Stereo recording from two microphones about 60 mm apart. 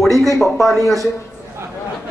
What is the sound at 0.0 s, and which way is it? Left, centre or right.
Speech, centre.